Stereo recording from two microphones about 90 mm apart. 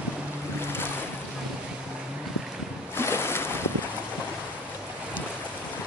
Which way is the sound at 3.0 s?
30° left (ahead or behind).